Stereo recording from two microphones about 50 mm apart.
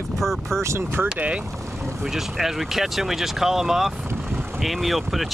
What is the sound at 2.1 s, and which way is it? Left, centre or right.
Speech, centre.